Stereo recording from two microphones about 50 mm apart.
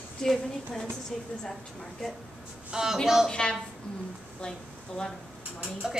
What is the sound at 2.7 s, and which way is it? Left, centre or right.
Speech, centre.